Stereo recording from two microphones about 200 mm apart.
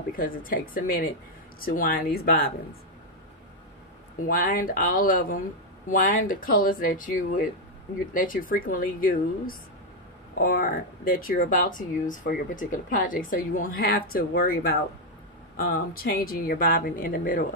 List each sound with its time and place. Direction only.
0.1 s speech: 45° left (ahead or behind)
4.2 s speech: 45° left (ahead or behind)
8.1 s speech: 45° left (ahead or behind)